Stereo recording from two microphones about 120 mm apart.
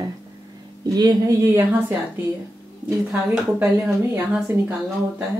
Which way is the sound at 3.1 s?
10° right (ahead or behind).